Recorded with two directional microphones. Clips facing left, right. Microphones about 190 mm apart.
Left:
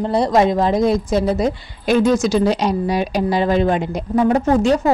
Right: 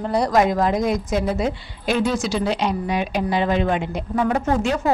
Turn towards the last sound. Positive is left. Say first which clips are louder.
# left 6 dB
turn(degrees=35)  # may be behind; listen again after turning